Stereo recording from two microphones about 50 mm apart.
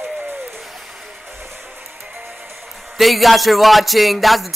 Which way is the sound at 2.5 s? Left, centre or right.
Centre.